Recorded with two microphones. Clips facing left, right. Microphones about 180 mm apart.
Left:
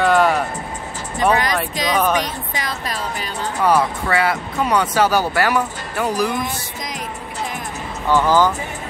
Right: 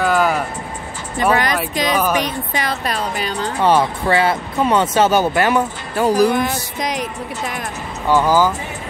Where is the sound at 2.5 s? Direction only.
65° right (ahead or behind).